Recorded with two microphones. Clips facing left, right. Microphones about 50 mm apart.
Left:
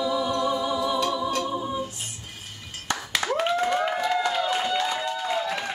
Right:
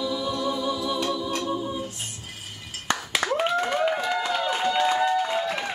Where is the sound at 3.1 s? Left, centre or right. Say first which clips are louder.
Even; centre.